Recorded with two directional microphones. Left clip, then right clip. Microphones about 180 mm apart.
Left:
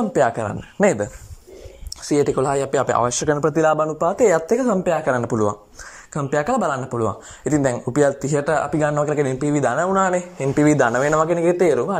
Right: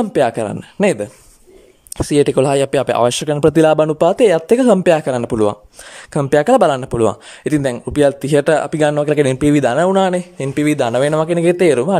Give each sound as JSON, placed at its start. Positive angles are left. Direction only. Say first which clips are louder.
{"t": 0.1, "sound": "speech", "louder": "right 1 dB", "side_deg": -30}
{"t": 2.0, "sound": "speech", "louder": "right 6 dB", "side_deg": -55}
{"t": 2.4, "sound": "speech", "louder": "right 5 dB", "side_deg": -35}
{"t": 3.3, "sound": "speech", "louder": "right 8 dB", "side_deg": -50}
{"t": 5.0, "sound": "speech", "louder": "right 3 dB", "side_deg": -25}
{"t": 6.1, "sound": "speech", "louder": "right 9 dB", "side_deg": -45}
{"t": 8.5, "sound": "speech", "louder": "right 5 dB", "side_deg": -35}
{"t": 11.6, "sound": "speech", "louder": "right 5 dB", "side_deg": -60}